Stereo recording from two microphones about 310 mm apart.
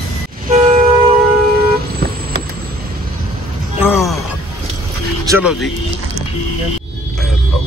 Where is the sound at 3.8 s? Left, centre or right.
Centre.